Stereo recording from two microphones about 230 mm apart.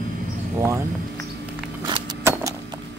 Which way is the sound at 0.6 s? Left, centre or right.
Centre.